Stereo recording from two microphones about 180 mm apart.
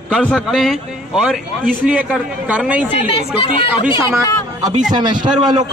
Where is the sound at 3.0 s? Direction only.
30° left (ahead or behind).